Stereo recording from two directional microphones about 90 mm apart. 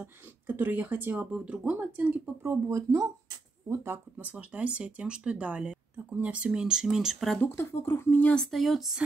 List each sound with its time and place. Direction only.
0.0 s speech: 20° right (ahead or behind)
2.4 s speech: 35° right (ahead or behind)
4.2 s speech: 15° right (ahead or behind)
7.4 s speech: 25° left (ahead or behind)
8.5 s speech: centre (ahead or behind)